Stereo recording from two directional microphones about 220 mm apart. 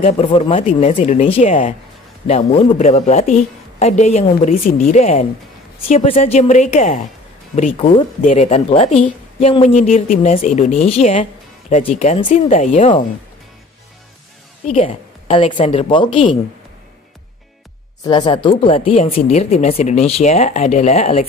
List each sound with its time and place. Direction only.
0.0 s a woman's voice: 30° left (ahead or behind)
14.7 s speech: 30° left (ahead or behind)
18.0 s speech: 20° left (ahead or behind)